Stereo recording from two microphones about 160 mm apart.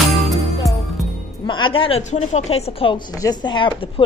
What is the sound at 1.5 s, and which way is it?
A woman's voice, 30° left (ahead or behind).